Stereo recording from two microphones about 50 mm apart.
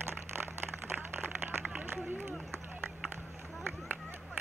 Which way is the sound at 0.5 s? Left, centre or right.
Right.